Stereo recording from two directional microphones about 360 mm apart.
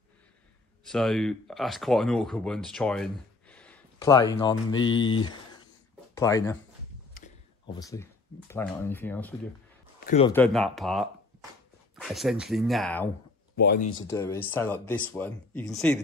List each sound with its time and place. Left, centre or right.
0.8 s speech: centre
7.2 s a sound: left
7.8 s speech: centre
9.9 s a man's voice: centre
10.3 s speech: centre
13.6 s speech: left
14.0 s speech: centre